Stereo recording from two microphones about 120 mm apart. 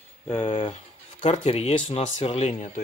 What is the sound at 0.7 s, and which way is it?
Speech, 60° left (ahead or behind).